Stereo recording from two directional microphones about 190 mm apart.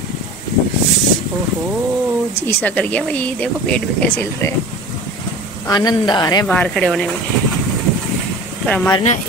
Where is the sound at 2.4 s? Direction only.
10° left (ahead or behind).